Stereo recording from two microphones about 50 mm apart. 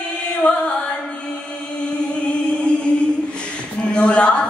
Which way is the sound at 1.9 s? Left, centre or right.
Left.